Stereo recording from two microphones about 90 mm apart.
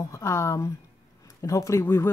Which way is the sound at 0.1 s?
35° left (ahead or behind).